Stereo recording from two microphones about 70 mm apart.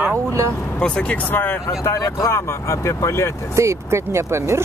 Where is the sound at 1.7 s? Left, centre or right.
Left.